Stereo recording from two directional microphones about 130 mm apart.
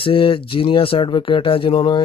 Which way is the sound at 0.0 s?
45° left (ahead or behind).